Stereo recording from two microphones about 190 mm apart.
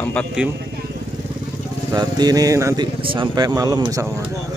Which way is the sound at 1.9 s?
20° right (ahead or behind).